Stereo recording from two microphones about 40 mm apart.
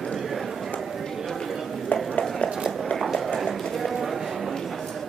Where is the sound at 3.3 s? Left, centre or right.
Centre.